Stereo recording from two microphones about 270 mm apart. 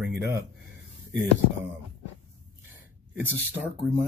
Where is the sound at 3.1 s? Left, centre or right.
Centre.